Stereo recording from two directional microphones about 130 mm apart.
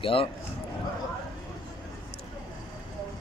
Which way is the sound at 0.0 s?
45° left (ahead or behind).